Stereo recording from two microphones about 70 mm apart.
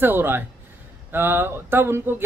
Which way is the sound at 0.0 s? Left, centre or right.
Right.